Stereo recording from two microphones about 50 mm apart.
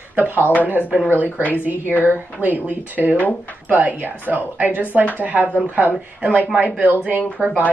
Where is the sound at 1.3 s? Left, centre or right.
Left.